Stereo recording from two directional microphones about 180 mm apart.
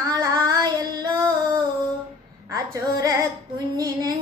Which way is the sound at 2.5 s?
20° right (ahead or behind).